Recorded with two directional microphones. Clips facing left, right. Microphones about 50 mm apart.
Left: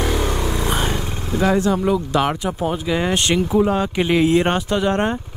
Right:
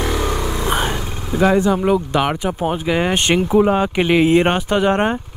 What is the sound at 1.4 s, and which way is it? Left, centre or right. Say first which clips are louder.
Speech: right 3 dB; centre.